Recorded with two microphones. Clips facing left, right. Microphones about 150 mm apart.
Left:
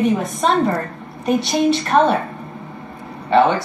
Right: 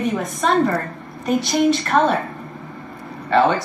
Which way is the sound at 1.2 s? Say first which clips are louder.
Left 1 dB; 20° left (ahead or behind).